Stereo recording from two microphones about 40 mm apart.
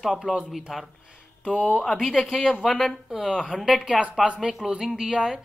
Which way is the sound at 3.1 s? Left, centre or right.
Centre.